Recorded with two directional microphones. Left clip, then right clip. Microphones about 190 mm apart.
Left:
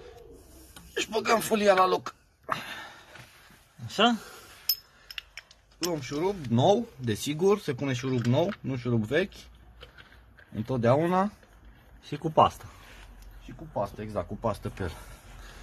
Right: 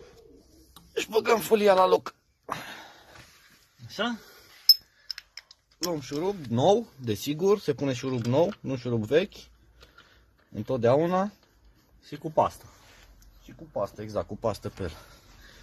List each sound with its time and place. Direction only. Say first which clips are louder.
0.9 s speech: right 2 dB; 50° right (ahead or behind)
2.4 s a sound: left 3 dB; 35° right (ahead or behind)
3.9 s speech: left 7 dB; 15° left (ahead or behind)
5.1 s speech: left 2 dB; 55° right (ahead or behind); by 9.5 s 35° right (ahead or behind)
10.5 s speech: right 2 dB; 35° right (ahead or behind)
12.1 s speech: left 3 dB; 5° left (ahead or behind)
13.5 s speech: right 1 dB; 50° right (ahead or behind)